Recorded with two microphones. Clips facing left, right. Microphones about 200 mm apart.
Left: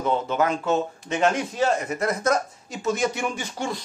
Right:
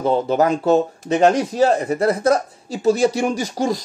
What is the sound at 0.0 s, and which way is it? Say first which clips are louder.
Speech: right 6 dB; 35° right (ahead or behind).